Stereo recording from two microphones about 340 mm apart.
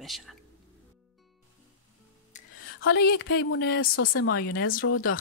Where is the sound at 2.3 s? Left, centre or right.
Left.